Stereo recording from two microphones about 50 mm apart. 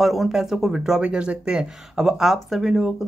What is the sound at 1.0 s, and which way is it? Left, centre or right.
Speech, centre.